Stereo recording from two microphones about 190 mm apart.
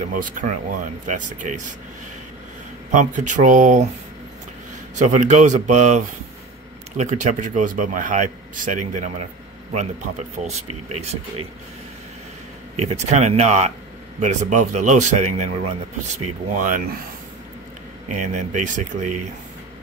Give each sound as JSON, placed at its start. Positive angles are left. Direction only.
{"t": 0.1, "sound": "speech", "side_deg": -45}
{"t": 2.9, "sound": "speech", "side_deg": -40}
{"t": 4.9, "sound": "speech", "side_deg": -40}
{"t": 12.8, "sound": "speech", "side_deg": -35}
{"t": 18.1, "sound": "speech", "side_deg": -40}